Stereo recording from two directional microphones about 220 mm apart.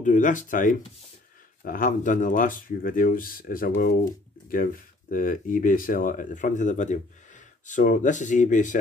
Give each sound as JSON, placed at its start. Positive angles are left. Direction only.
{"t": 0.0, "sound": "speech", "side_deg": 35}
{"t": 5.1, "sound": "speech", "side_deg": 40}